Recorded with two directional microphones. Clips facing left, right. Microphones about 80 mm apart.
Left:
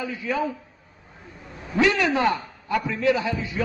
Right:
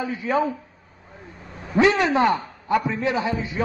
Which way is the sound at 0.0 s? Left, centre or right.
Right.